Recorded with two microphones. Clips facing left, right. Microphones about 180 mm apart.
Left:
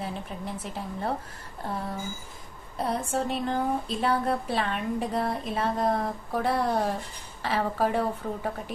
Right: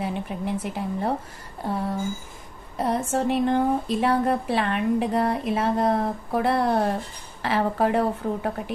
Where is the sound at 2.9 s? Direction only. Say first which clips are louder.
Right 7 dB; 70° right (ahead or behind).